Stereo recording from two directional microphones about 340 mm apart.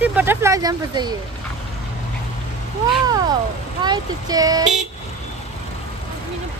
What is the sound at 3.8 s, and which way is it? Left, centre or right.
Speech, centre.